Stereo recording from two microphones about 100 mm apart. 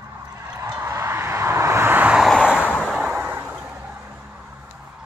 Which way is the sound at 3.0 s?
15° right (ahead or behind).